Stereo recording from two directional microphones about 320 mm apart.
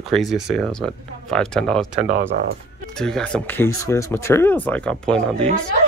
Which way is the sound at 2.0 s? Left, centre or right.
Right.